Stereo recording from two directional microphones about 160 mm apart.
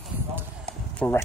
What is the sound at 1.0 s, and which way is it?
Speech, 5° left (ahead or behind).